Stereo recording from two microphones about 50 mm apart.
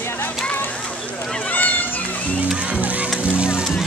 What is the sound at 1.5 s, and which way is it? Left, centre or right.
Cat, left.